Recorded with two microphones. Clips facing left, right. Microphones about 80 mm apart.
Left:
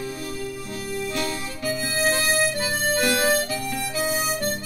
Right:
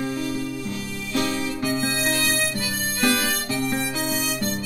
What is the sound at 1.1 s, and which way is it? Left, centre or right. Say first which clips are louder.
Music: right 4 dB; right.